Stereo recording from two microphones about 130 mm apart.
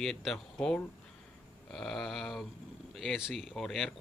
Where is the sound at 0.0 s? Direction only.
5° left (ahead or behind).